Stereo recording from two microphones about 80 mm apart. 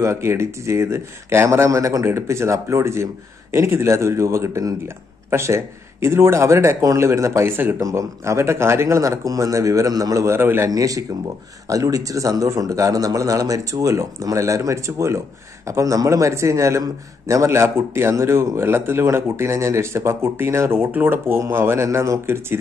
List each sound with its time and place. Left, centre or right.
0.0 s speech: right
7.8 s a man's voice: right
10.2 s speech: right
10.7 s a man's voice: right